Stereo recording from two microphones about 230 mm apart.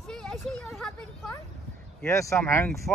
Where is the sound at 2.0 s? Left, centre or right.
Centre.